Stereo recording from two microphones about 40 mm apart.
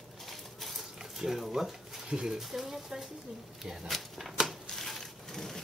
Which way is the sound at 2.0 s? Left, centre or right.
Centre.